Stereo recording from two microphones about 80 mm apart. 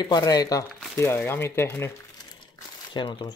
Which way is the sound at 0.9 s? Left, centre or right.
Left.